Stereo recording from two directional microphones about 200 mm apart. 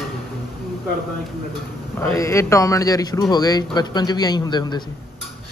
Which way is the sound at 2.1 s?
15° left (ahead or behind).